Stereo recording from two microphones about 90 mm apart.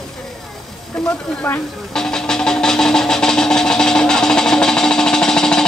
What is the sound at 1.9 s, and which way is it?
Music, 5° left (ahead or behind).